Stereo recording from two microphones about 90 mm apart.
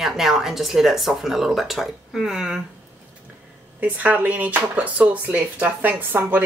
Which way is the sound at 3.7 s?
20° right (ahead or behind).